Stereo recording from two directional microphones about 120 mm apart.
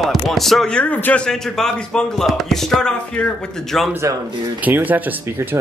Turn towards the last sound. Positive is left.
turn(degrees=-15)  # may be behind; listen again after turning